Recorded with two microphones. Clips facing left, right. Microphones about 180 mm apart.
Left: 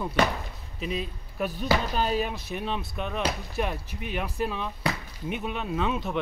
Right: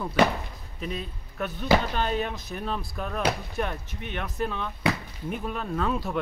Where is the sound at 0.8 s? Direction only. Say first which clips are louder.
Left 2 dB; 5° left (ahead or behind).